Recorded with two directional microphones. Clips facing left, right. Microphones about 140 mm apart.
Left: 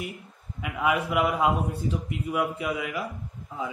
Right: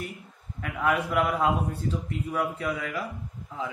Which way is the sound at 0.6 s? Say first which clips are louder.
Left 1 dB; 5° left (ahead or behind).